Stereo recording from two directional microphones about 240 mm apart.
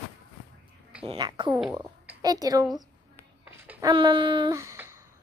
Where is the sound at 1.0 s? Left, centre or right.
Centre.